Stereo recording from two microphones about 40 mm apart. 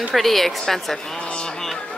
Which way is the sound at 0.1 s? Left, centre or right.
Centre.